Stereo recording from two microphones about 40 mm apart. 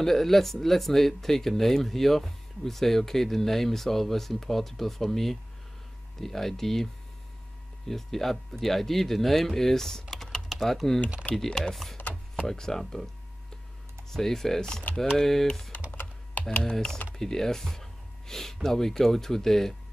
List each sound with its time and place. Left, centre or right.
0.0 s speech: centre
7.9 s speech: centre
10.5 s speech: centre
15.9 s computer keyboard: left
16.7 s speech: centre